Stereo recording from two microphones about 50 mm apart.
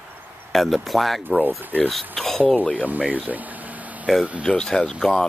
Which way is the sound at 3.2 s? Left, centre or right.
Right.